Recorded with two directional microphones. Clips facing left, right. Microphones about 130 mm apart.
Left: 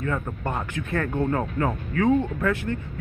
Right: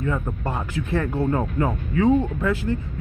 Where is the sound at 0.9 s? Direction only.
10° right (ahead or behind).